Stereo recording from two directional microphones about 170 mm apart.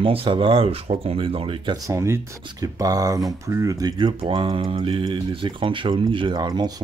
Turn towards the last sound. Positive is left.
turn(degrees=-25)  # may be behind; listen again after turning